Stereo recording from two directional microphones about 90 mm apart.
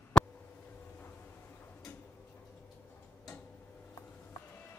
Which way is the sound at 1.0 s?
25° left (ahead or behind).